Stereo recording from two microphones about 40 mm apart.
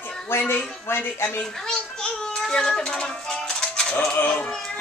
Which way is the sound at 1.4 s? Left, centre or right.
Centre.